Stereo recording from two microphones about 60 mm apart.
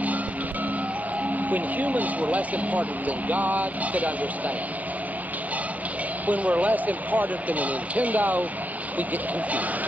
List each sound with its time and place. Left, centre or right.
1.5 s speech: right
6.2 s speech: right